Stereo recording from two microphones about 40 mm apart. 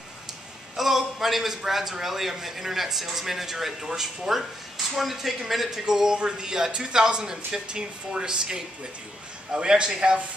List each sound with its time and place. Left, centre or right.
0.7 s a man's voice: centre; by 10.2 s right